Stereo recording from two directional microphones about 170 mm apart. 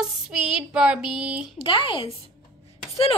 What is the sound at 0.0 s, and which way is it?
Child singing, 5° right (ahead or behind).